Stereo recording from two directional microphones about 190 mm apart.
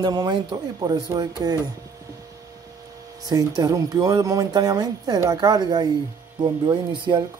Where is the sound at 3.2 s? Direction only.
20° right (ahead or behind).